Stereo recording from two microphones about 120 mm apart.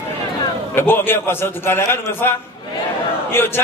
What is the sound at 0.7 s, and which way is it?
A man's voice, 20° left (ahead or behind).